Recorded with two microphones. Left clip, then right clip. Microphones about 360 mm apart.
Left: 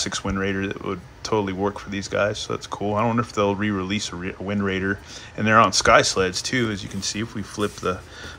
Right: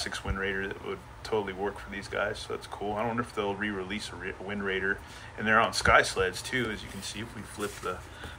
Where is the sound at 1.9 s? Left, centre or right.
Centre.